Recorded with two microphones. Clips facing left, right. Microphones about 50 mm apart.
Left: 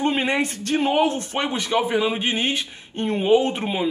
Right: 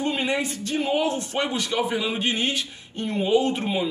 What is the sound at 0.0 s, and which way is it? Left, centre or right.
Speech, left.